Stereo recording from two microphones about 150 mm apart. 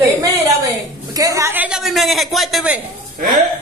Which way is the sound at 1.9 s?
Centre (ahead or behind).